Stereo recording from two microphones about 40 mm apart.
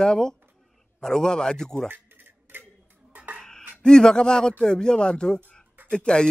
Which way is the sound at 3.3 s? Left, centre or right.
Centre.